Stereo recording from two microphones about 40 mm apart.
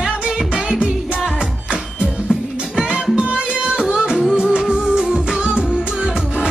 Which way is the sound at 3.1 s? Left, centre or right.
Right.